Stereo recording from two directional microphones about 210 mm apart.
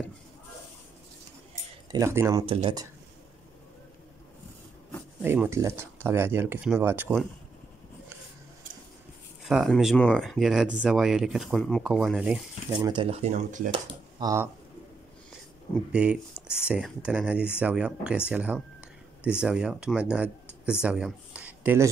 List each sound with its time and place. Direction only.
1.9 s speech: 15° right (ahead or behind)
2.4 s speech: 25° right (ahead or behind)
5.2 s speech: 10° right (ahead or behind)
9.4 s speech: centre (ahead or behind)
12.7 s speech: 25° right (ahead or behind)
14.2 s speech: 15° right (ahead or behind)
15.9 s speech: 5° right (ahead or behind)